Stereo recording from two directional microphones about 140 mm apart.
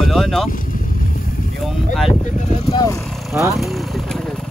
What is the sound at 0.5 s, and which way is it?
Vehicle, 75° left (ahead or behind).